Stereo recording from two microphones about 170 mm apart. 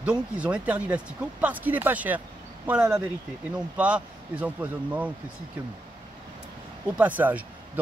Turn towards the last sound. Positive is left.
turn(degrees=-10)  # may be behind; listen again after turning